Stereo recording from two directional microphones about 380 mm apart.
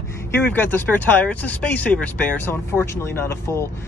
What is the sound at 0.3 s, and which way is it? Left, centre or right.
Speech, centre.